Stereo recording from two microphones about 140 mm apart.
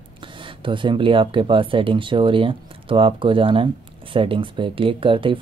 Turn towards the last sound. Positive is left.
turn(degrees=-40)  # may be behind; listen again after turning